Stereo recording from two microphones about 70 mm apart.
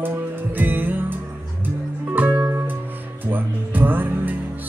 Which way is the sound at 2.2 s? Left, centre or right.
Right.